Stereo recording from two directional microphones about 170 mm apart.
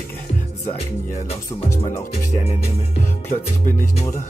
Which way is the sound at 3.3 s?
45° left (ahead or behind).